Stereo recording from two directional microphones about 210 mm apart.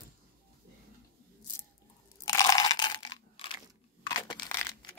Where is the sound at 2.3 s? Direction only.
15° left (ahead or behind).